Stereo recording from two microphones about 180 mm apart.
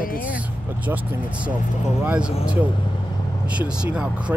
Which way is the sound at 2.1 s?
5° right (ahead or behind).